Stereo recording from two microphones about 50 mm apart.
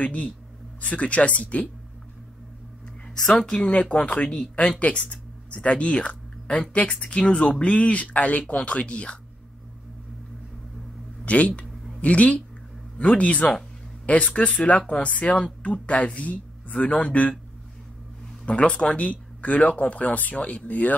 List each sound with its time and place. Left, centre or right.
0.0 s speech: left
3.3 s speech: centre
11.2 s speech: left
18.4 s speech: left